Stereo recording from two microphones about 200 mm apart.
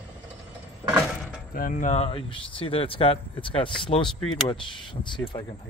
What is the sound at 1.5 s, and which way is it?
Speech, 45° left (ahead or behind).